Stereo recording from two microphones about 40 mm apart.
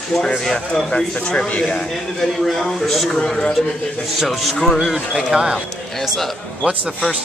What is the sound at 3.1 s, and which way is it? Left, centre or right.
Speech, centre.